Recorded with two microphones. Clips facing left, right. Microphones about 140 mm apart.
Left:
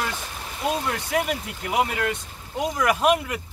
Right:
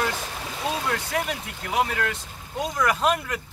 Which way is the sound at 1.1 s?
20° left (ahead or behind).